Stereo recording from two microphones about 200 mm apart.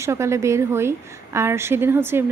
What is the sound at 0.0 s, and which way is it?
A woman's voice, 15° right (ahead or behind).